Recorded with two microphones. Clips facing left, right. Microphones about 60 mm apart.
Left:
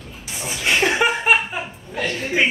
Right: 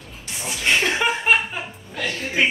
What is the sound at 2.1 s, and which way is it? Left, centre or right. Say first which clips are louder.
Speech: left 1 dB; centre.